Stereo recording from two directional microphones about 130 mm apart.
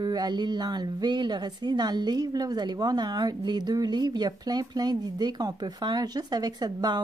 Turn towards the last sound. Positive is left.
turn(degrees=-30)  # may be behind; listen again after turning